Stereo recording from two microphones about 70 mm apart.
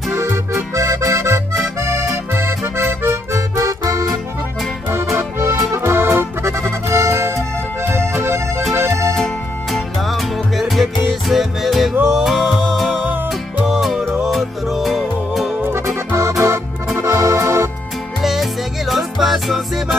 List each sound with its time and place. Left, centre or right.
0.1 s accordion: right
3.5 s music: right
5.1 s accordion: right
8.7 s music: right
9.1 s music: centre
16.2 s music: right
18.2 s music: centre